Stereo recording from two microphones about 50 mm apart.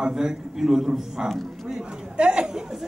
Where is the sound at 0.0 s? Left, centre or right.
Centre.